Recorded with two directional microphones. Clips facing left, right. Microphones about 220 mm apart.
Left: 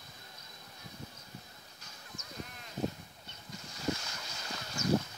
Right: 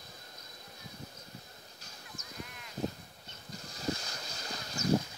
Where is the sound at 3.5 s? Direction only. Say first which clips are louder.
Even; 35° right (ahead or behind).